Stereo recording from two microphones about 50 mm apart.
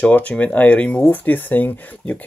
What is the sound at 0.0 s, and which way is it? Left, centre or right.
Speech, left.